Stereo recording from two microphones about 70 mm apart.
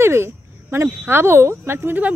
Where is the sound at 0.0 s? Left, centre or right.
Right.